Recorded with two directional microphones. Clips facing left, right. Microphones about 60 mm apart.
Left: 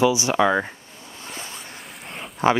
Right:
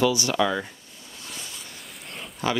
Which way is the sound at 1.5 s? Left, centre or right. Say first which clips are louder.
Left 4 dB; left.